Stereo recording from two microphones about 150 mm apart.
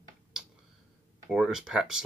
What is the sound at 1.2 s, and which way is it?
Speech, 5° right (ahead or behind).